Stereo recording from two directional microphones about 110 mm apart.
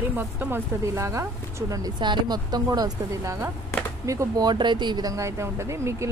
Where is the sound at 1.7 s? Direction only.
40° right (ahead or behind).